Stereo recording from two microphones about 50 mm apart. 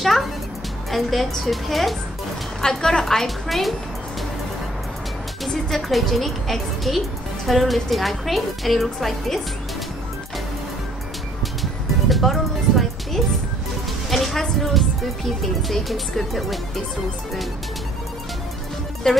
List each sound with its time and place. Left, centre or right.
0.0 s a woman's voice: centre
2.6 s a woman's voice: centre
5.5 s a woman's voice: centre
11.4 s music: centre
14.1 s speech: centre
19.1 s a woman's voice: centre